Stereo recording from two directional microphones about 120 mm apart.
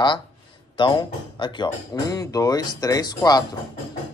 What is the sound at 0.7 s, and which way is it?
Speech, 40° left (ahead or behind).